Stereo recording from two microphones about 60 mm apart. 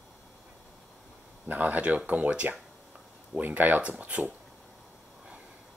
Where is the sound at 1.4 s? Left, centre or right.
Right.